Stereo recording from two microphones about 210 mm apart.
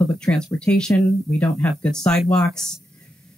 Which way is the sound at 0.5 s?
5° left (ahead or behind).